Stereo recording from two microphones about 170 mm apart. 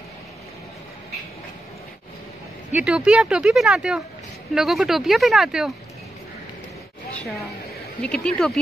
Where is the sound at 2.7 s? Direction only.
5° right (ahead or behind).